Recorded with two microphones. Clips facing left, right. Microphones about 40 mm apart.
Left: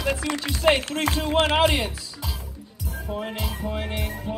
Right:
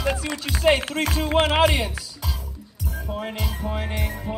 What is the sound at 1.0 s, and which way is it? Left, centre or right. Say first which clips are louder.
Speech: even; centre.